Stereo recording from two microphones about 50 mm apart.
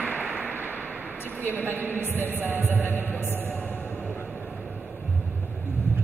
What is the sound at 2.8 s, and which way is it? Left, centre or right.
Music, left.